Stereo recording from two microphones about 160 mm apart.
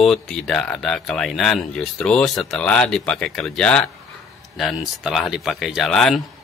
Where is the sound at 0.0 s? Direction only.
Centre (ahead or behind).